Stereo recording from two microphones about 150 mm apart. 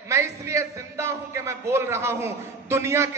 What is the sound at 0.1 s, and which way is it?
A man's voice, 20° right (ahead or behind).